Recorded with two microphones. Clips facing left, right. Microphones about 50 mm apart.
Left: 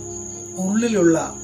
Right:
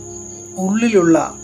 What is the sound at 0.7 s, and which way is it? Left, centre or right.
Speech, right.